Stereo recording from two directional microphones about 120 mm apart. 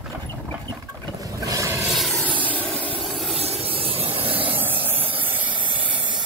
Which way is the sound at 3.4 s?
55° right (ahead or behind).